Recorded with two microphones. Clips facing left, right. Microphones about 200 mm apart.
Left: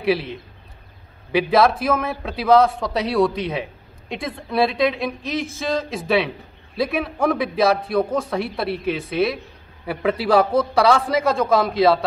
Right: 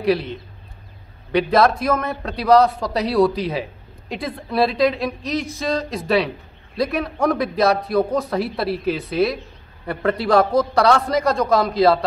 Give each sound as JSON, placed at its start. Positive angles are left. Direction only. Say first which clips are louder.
{"t": 0.0, "sound": "speech", "louder": "right 1 dB", "side_deg": 0}